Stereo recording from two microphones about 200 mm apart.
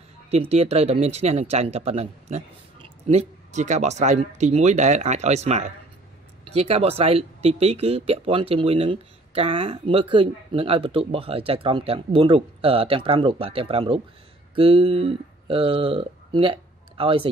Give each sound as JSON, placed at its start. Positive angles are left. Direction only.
{"t": 0.3, "sound": "speech", "side_deg": -30}